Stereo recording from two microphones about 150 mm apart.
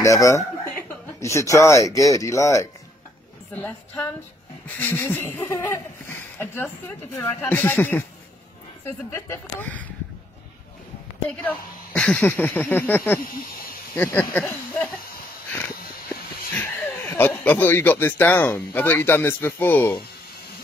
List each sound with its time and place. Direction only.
0.0 s speech: 20° left (ahead or behind)
9.1 s speech: 15° left (ahead or behind)
11.2 s speech: 10° left (ahead or behind)
16.5 s speech: 15° left (ahead or behind)